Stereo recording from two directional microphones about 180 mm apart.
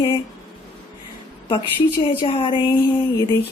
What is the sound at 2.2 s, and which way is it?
Speech, 30° left (ahead or behind).